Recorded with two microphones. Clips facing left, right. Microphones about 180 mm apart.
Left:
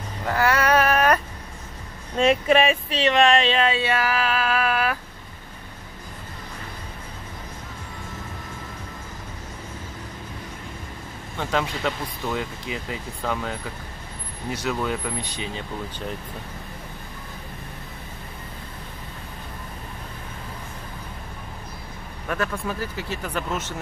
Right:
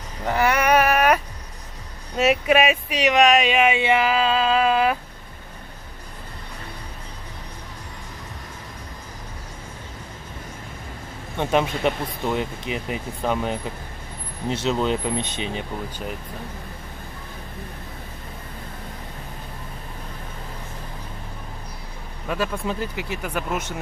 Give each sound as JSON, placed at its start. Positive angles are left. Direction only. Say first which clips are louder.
{"t": 0.3, "sound": "a sound", "louder": "right 1 dB", "side_deg": -15}
{"t": 2.1, "sound": "speech", "louder": "even", "side_deg": -5}
{"t": 11.3, "sound": "speech", "louder": "right 4 dB", "side_deg": -20}
{"t": 22.3, "sound": "speech", "louder": "right 2 dB", "side_deg": -15}